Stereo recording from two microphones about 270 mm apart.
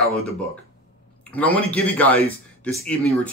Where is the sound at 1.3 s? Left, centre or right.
Centre.